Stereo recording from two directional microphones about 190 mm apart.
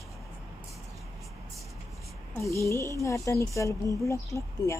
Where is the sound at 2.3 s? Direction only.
15° left (ahead or behind).